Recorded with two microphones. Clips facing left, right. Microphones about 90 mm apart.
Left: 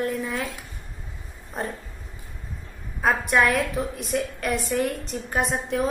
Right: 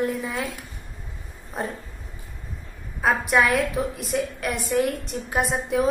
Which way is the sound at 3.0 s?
Centre (ahead or behind).